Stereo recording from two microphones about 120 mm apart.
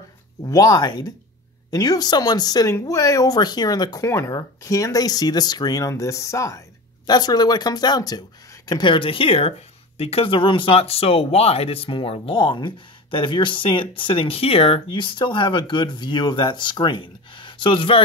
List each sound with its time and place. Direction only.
0.4 s speech: 30° left (ahead or behind)